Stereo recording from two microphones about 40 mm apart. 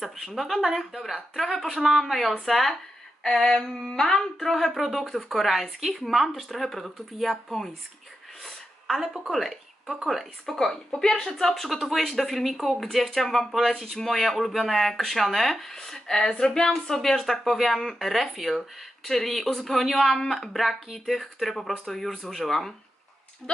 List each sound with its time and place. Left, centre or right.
0.0 s speech: centre
3.3 s speech: centre
4.4 s speech: centre
8.5 s a sound: centre
9.3 s speech: centre